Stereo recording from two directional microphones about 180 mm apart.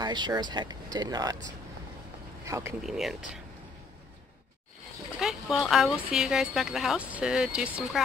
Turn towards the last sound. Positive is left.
turn(degrees=-5)  # may be behind; listen again after turning